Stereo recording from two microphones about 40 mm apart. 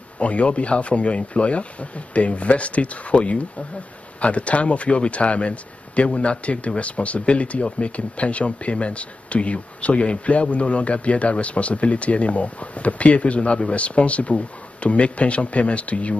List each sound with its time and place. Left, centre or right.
0.2 s speech: left